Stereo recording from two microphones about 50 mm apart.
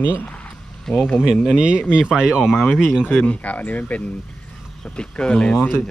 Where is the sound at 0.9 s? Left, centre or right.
Centre.